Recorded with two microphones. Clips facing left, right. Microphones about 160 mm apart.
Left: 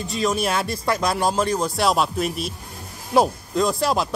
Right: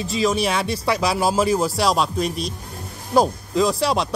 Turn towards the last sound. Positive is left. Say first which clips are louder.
# right 1 dB
turn(degrees=0)  # may be behind; listen again after turning